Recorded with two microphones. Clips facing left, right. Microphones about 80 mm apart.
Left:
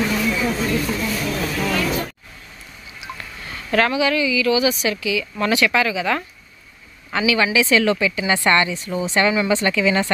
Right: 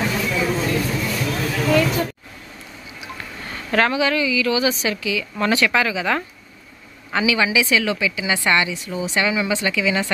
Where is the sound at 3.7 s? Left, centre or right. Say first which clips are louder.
Even; right.